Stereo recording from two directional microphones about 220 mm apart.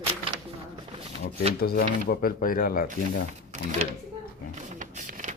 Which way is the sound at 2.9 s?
35° right (ahead or behind).